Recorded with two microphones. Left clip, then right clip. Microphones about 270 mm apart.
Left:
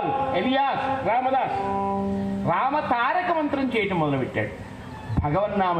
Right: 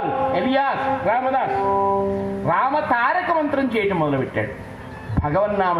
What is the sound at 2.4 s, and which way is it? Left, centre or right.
Speech, right.